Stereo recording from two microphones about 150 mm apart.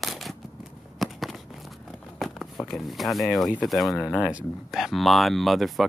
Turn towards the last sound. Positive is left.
turn(degrees=0)  # may be behind; listen again after turning